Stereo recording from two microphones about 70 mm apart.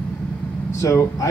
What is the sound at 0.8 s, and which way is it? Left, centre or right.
Speech, left.